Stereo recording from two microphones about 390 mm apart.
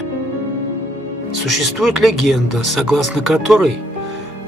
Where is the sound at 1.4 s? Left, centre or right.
Centre.